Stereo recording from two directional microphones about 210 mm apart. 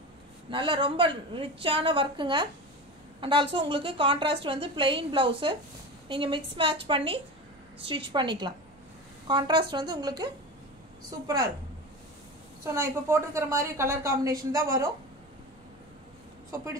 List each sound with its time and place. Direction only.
0.5 s a woman's voice: 25° right (ahead or behind)
12.6 s a woman's voice: 10° right (ahead or behind)